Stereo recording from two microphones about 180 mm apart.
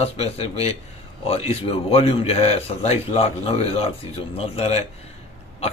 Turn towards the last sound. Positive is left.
turn(degrees=35)  # may be behind; listen again after turning